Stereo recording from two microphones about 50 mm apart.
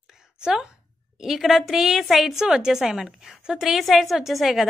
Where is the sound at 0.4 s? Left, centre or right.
Centre.